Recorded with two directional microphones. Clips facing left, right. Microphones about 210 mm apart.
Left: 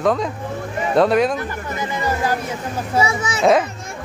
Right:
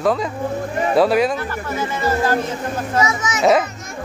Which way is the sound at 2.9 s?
30° left (ahead or behind).